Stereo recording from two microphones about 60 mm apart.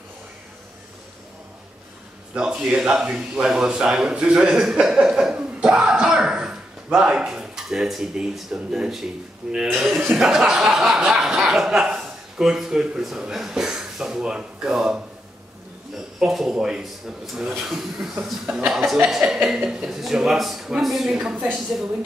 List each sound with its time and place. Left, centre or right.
2.3 s a man's voice: centre
5.3 s throat clearing: centre
8.5 s a man's voice: centre
16.2 s a man's voice: centre